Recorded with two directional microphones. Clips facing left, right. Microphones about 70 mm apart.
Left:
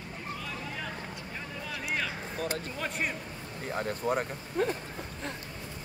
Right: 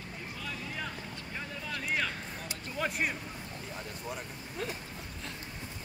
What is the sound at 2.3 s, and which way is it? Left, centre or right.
Speech, left.